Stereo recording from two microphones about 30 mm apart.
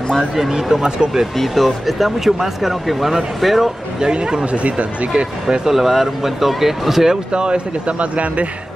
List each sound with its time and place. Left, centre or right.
0.5 s speech: centre
1.4 s speech: centre
4.0 s speech: right
4.6 s speech: right
5.7 s speech: centre
7.3 s speech: right
8.0 s speech: right